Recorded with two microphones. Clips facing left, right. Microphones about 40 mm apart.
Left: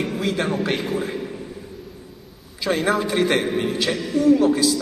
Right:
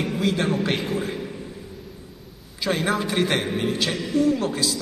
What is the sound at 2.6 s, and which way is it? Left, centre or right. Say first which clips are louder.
A man's voice: left 3 dB; centre.